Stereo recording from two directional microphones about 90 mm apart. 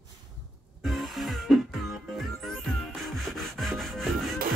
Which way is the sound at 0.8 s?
Centre (ahead or behind).